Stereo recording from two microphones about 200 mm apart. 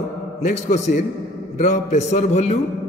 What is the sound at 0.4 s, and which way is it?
A man's voice, 40° left (ahead or behind).